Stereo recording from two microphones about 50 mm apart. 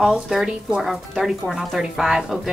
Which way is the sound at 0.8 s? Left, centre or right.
Centre.